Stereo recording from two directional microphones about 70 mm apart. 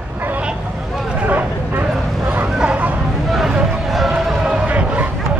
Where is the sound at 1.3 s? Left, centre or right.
Right.